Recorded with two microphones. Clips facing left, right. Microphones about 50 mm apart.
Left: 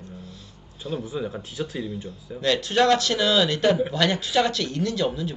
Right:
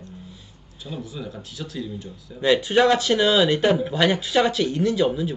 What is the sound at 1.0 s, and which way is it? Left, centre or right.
Speech, left.